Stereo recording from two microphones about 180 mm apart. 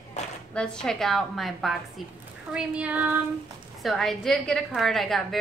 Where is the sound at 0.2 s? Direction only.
40° left (ahead or behind).